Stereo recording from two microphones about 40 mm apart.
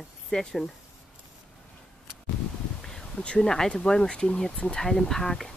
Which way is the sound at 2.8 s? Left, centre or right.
Centre.